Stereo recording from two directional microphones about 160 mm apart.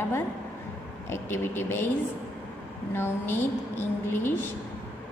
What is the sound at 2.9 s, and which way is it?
A woman's voice, 15° left (ahead or behind).